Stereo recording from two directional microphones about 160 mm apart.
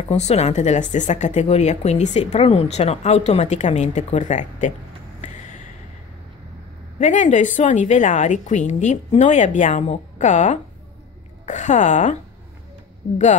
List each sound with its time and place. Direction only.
0.1 s speech: 45° left (ahead or behind)
7.0 s speech: 50° left (ahead or behind)